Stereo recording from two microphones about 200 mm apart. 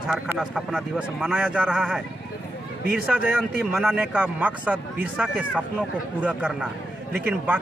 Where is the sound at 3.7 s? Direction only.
5° right (ahead or behind).